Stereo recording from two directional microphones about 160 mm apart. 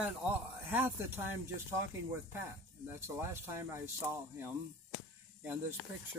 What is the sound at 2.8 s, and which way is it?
Speech, 15° right (ahead or behind).